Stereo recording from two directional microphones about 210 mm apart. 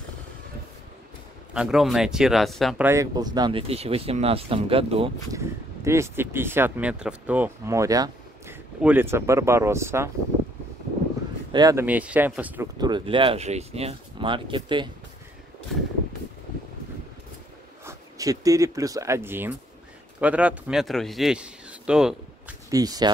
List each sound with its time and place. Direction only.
1.5 s speech: 5° right (ahead or behind)
2.9 s speech: 15° right (ahead or behind)
5.3 s speech: 15° right (ahead or behind)
11.5 s speech: 15° right (ahead or behind)
12.7 s speech: 20° right (ahead or behind)
17.8 s speech: 15° right (ahead or behind)
22.7 s speech: 15° right (ahead or behind)